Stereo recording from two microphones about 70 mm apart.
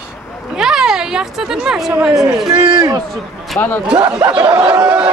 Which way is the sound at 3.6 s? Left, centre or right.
Left.